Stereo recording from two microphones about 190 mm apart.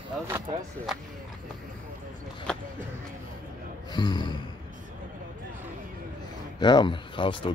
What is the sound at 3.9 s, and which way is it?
Gasp, 25° left (ahead or behind).